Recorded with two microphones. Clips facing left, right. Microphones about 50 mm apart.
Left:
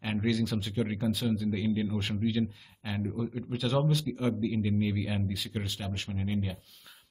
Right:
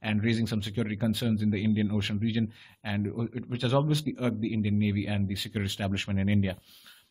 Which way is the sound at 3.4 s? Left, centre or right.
Centre.